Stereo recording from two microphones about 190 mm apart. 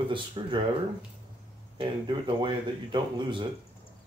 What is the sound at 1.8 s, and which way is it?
Speech, 25° right (ahead or behind).